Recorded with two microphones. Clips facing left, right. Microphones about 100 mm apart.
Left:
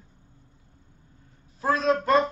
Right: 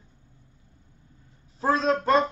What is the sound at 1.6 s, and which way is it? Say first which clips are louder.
Speech: even; 30° right (ahead or behind).